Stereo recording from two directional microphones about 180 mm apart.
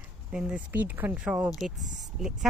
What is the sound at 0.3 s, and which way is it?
Speech, 5° right (ahead or behind).